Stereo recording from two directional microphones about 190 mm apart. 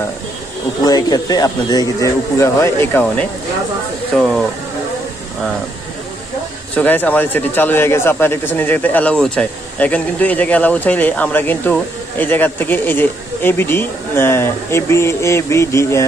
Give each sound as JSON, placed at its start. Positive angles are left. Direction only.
{"t": 0.8, "sound": "speech", "side_deg": 20}
{"t": 6.7, "sound": "speech", "side_deg": 10}